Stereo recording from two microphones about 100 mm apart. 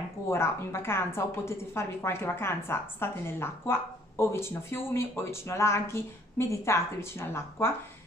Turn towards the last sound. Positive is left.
turn(degrees=25)  # may be behind; listen again after turning